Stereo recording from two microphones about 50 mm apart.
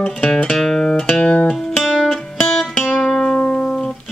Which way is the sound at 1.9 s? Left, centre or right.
Centre.